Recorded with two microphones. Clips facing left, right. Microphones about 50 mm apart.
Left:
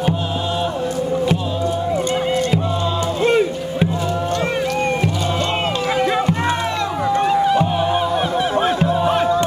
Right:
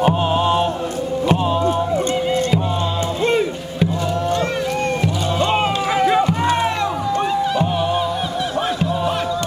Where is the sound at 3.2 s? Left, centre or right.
Centre.